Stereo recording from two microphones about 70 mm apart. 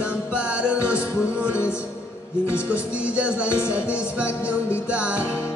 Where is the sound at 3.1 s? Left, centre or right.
Centre.